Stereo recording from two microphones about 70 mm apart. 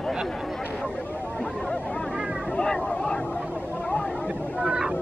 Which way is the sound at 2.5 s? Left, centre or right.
Centre.